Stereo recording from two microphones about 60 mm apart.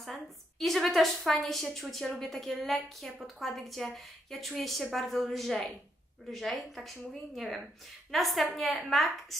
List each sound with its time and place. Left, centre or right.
0.0 s a woman's voice: centre